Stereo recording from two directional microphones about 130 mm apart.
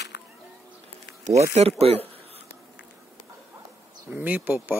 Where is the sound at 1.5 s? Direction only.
50° right (ahead or behind).